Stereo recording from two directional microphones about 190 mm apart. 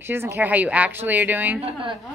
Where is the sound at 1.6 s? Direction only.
25° right (ahead or behind).